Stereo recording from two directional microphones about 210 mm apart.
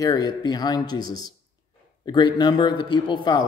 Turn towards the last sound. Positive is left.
turn(degrees=20)  # may be behind; listen again after turning